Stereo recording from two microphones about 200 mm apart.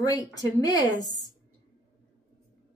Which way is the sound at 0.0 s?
20° left (ahead or behind).